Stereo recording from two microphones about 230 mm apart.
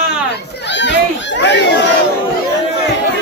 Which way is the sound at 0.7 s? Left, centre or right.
Left.